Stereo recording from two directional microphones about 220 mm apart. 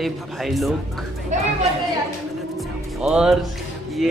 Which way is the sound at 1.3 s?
35° right (ahead or behind).